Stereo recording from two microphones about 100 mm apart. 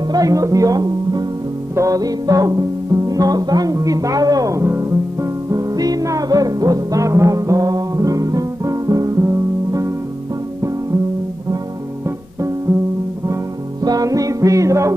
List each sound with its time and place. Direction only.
0.1 s speech: 35° right (ahead or behind)
5.5 s music: 35° right (ahead or behind)
13.8 s music: 35° right (ahead or behind)